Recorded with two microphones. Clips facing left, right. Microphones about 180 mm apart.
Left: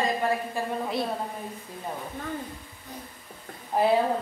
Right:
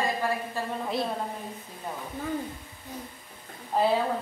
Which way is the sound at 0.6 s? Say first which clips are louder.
Left 2 dB; 15° left (ahead or behind).